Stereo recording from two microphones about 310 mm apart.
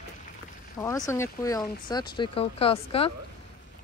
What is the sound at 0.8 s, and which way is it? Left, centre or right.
Speech, centre.